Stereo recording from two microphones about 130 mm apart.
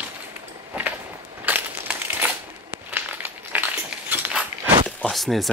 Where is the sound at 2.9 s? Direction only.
15° right (ahead or behind).